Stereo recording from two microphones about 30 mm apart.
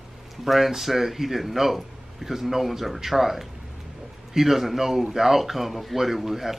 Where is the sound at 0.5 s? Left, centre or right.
Centre.